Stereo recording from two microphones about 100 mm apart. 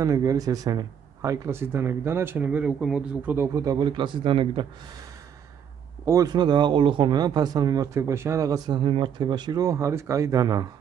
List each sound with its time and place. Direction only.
0.0 s speech: 35° right (ahead or behind); by 3.3 s 10° right (ahead or behind)
3.3 s speech: 35° right (ahead or behind)
3.8 s speech: 50° right (ahead or behind)
6.0 s speech: 35° right (ahead or behind)
6.3 s speech: 50° right (ahead or behind)